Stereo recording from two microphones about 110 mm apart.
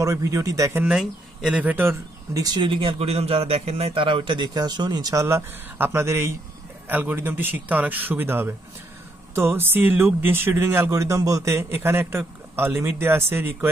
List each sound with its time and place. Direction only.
0.0 s speech: 30° right (ahead or behind)
0.8 s a man's voice: 5° right (ahead or behind)
2.4 s a man's voice: 45° right (ahead or behind); by 13.7 s 20° right (ahead or behind)